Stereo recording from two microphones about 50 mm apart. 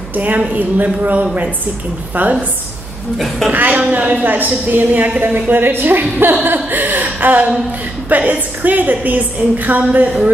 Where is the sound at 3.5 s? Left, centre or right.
Right.